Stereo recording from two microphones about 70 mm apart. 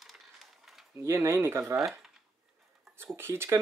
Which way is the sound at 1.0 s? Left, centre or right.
Right.